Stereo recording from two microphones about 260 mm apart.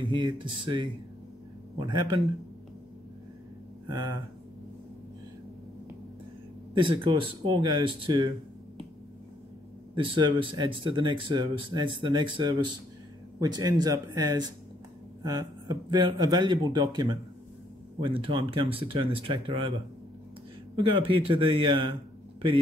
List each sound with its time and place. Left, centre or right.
0.0 s speech: centre
6.7 s speech: centre
9.9 s speech: centre
20.8 s speech: right